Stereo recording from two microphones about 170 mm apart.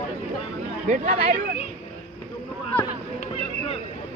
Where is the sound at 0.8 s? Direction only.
50° right (ahead or behind).